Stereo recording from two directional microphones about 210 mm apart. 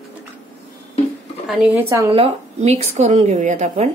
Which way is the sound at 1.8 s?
15° right (ahead or behind).